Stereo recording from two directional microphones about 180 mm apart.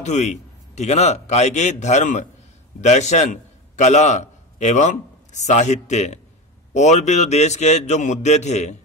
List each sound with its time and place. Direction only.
0.0 s a man's voice: 40° left (ahead or behind)